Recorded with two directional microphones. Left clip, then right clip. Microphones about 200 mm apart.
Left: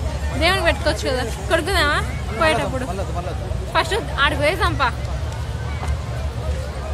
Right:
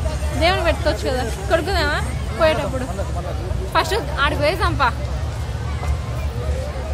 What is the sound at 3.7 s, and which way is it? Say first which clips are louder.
A woman's voice: even; 5° right (ahead or behind).